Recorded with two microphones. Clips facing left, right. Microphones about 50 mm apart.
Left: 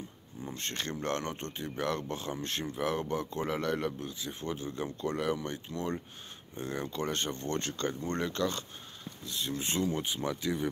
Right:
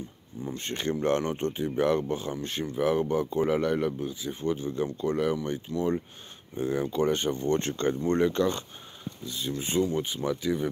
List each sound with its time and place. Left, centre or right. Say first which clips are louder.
0.4 s speech: right 5 dB; centre
7.6 s speech: right 7 dB; right
9.2 s speech: right 2 dB; centre